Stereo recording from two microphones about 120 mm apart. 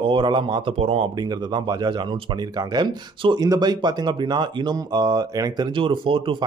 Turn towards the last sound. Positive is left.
turn(degrees=-45)  # may be behind; listen again after turning